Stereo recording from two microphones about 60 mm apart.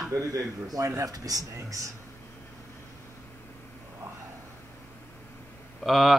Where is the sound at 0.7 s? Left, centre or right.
Right.